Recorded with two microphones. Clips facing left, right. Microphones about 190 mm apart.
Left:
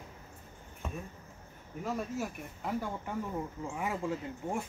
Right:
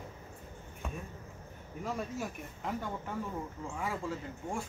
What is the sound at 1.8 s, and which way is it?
Speech, 5° left (ahead or behind).